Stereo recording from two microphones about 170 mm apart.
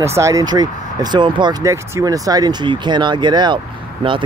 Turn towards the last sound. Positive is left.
turn(degrees=-30)  # may be behind; listen again after turning